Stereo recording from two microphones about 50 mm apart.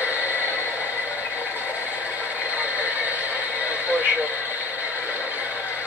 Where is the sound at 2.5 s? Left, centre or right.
Right.